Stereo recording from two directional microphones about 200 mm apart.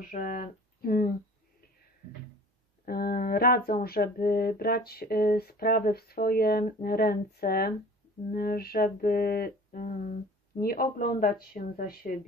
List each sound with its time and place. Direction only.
0.0 s speech: 45° left (ahead or behind)
2.8 s speech: 50° left (ahead or behind)